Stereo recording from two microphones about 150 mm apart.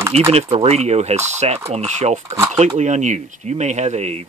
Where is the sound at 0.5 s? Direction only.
45° right (ahead or behind).